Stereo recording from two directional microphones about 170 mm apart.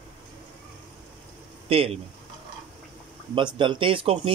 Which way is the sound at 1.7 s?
35° right (ahead or behind).